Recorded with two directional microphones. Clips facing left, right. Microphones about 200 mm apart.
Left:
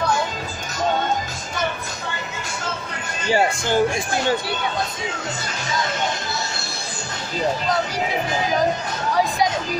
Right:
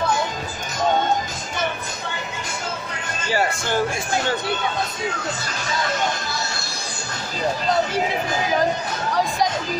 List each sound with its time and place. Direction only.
3.3 s speech: 20° left (ahead or behind)